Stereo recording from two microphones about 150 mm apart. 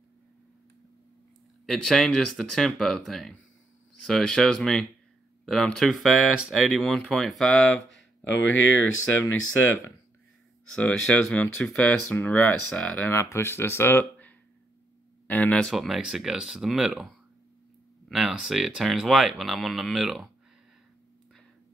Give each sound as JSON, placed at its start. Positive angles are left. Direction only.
{"t": 1.7, "sound": "speech", "side_deg": 0}
{"t": 10.7, "sound": "speech", "side_deg": 5}
{"t": 15.7, "sound": "speech", "side_deg": 0}